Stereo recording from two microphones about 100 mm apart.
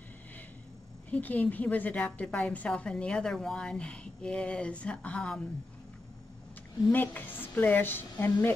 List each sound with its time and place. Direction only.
1.1 s a woman's voice: 15° left (ahead or behind)
6.9 s a woman's voice: 20° left (ahead or behind)